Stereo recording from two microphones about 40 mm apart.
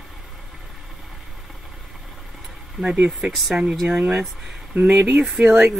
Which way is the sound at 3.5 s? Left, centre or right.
Right.